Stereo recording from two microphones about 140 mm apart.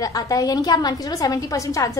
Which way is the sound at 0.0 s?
25° left (ahead or behind).